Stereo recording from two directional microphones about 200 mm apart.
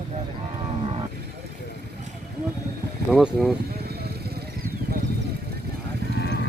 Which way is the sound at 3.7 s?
55° right (ahead or behind).